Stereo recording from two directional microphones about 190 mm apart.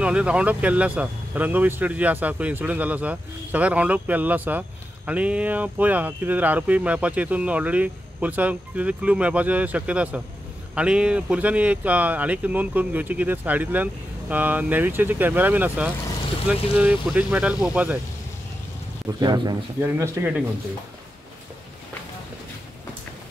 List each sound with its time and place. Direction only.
0.0 s speech: 5° right (ahead or behind)
19.1 s speech: 20° right (ahead or behind)